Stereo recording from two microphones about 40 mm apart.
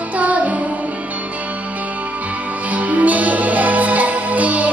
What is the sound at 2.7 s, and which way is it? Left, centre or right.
Music, right.